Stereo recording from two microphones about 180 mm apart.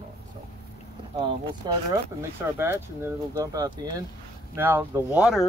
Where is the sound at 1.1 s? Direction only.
25° right (ahead or behind).